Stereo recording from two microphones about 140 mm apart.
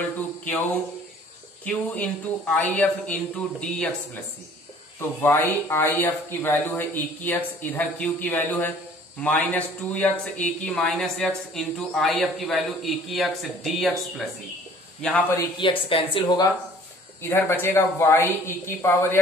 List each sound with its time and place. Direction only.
1.6 s speech: 10° left (ahead or behind)
5.2 s a man's voice: 15° left (ahead or behind)
15.9 s speech: 40° left (ahead or behind)
17.2 s speech: 15° left (ahead or behind)